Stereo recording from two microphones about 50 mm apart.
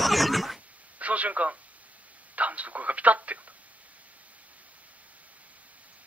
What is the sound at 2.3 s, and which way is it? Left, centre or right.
Radio, right.